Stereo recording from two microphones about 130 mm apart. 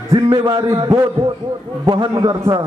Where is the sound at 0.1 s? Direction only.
35° right (ahead or behind).